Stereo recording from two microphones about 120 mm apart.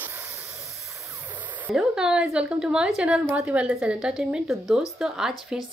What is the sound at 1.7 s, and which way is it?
A woman's voice, 5° right (ahead or behind).